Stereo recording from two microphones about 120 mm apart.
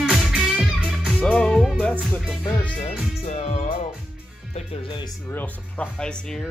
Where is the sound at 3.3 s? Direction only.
60° left (ahead or behind).